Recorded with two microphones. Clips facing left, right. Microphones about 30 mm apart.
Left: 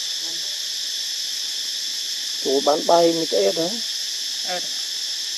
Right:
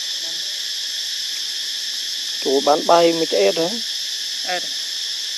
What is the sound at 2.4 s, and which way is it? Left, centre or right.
Speech, right.